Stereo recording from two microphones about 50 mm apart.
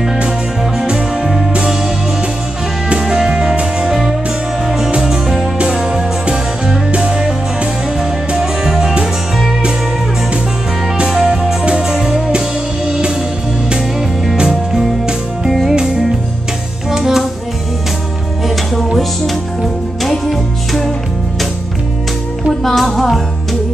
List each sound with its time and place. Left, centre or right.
0.8 s music: centre
2.9 s music: centre
11.1 s music: centre
14.3 s music: centre
18.9 s music: centre
22.6 s music: centre